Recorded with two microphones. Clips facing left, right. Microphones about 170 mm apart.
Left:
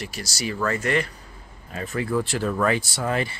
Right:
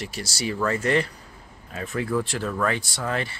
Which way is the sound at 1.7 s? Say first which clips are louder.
Left 1 dB; centre (ahead or behind).